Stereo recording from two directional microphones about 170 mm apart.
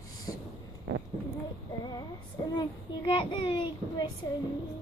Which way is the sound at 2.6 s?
30° left (ahead or behind).